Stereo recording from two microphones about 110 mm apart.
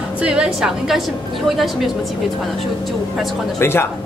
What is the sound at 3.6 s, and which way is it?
Speech, 20° left (ahead or behind).